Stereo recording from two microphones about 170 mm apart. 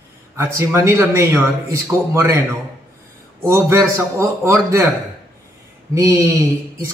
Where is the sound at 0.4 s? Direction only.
15° right (ahead or behind).